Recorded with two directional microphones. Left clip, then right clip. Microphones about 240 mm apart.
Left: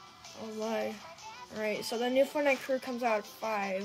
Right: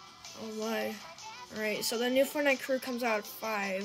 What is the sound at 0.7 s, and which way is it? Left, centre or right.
Speech, right.